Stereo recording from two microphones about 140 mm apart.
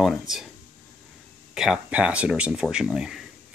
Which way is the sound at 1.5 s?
5° right (ahead or behind).